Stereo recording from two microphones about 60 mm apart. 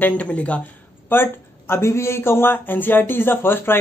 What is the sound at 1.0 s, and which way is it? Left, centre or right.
Speech, left.